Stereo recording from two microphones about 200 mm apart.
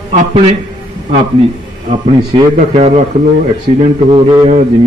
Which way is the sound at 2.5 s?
35° right (ahead or behind).